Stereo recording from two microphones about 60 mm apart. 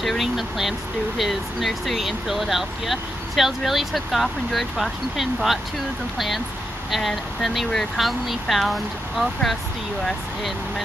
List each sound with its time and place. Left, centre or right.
0.0 s speech: centre